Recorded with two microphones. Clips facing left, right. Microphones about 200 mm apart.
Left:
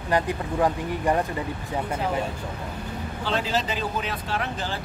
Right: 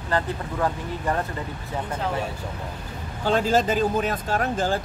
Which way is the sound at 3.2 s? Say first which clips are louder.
Right 6 dB; 45° right (ahead or behind).